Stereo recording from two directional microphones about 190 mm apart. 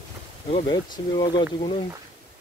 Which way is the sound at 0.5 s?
25° left (ahead or behind).